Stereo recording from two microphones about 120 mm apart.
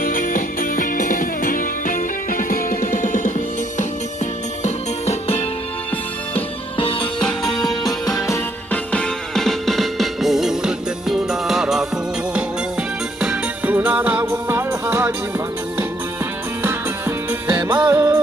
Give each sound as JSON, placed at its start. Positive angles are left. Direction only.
{"t": 3.0, "sound": "music", "side_deg": 90}
{"t": 4.6, "sound": "music", "side_deg": 65}
{"t": 6.8, "sound": "music", "side_deg": 50}
{"t": 7.2, "sound": "music", "side_deg": 5}
{"t": 7.8, "sound": "music", "side_deg": 30}
{"t": 8.9, "sound": "music", "side_deg": 5}
{"t": 13.2, "sound": "music", "side_deg": -10}
{"t": 17.3, "sound": "music", "side_deg": -20}